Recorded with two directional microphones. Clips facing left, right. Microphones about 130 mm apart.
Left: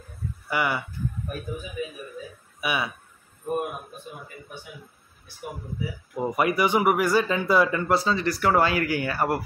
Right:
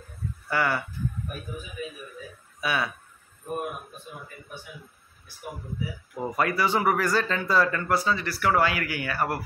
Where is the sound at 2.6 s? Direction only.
15° left (ahead or behind).